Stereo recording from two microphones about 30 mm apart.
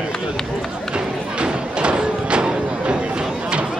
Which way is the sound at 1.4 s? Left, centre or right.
Right.